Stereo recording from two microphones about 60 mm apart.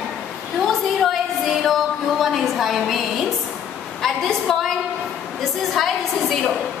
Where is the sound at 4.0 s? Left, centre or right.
Centre.